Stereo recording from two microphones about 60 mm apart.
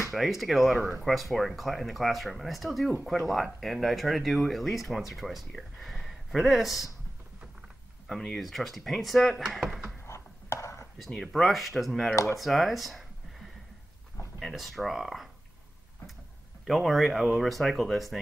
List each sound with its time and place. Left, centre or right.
0.1 s speech: centre
8.1 s speech: centre
10.0 s chopping: left
11.0 s speech: centre
12.4 s a sound: centre
14.4 s speech: centre
16.6 s speech: centre